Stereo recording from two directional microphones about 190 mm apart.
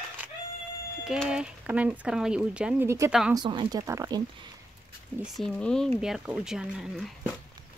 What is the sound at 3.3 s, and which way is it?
Speech, 25° right (ahead or behind).